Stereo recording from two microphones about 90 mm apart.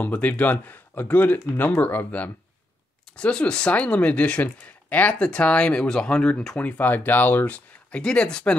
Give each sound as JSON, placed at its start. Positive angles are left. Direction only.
{"t": 0.0, "sound": "speech", "side_deg": 15}